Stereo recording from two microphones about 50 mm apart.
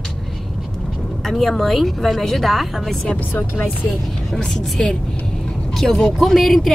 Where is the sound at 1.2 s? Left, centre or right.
Centre.